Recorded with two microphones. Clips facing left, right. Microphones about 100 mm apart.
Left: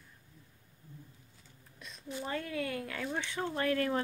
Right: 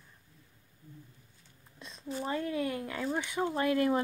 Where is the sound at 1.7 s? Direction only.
25° right (ahead or behind).